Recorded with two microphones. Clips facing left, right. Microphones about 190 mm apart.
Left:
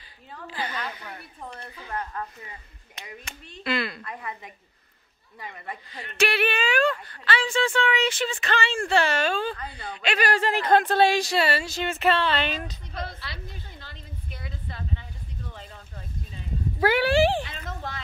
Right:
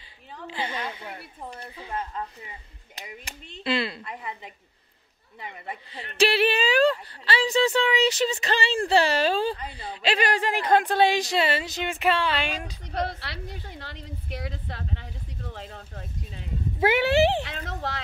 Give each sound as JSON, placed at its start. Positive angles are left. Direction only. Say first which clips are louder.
{"t": 0.5, "sound": "speech", "louder": "right 1 dB", "side_deg": -25}
{"t": 1.5, "sound": "speech", "louder": "right 1 dB", "side_deg": -15}
{"t": 3.3, "sound": "speech", "louder": "right 2 dB", "side_deg": -30}
{"t": 5.4, "sound": "a woman's voice", "louder": "right 1 dB", "side_deg": -25}
{"t": 12.9, "sound": "a woman's voice", "louder": "right 8 dB", "side_deg": -70}
{"t": 16.8, "sound": "speech", "louder": "even", "side_deg": -25}
{"t": 17.5, "sound": "speech", "louder": "right 3 dB", "side_deg": -80}